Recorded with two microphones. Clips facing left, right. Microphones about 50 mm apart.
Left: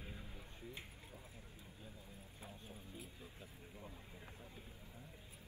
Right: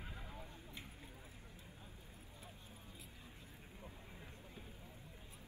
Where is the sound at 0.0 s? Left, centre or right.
Right.